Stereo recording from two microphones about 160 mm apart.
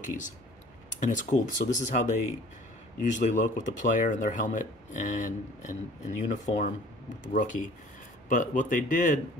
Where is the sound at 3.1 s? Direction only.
50° left (ahead or behind).